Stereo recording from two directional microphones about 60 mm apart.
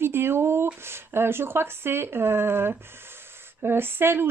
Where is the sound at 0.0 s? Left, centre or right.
Right.